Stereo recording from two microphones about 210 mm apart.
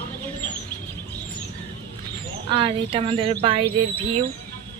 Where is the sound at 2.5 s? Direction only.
25° right (ahead or behind).